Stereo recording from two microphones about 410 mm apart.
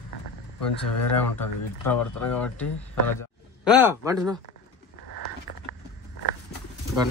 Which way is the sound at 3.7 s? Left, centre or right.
Centre.